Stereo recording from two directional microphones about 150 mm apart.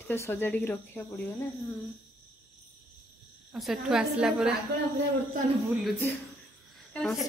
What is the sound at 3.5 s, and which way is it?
A woman's voice, centre (ahead or behind).